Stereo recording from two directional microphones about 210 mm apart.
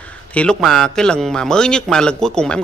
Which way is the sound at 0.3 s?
5° left (ahead or behind).